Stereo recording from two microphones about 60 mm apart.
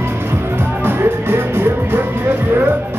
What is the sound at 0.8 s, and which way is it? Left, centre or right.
Music, right.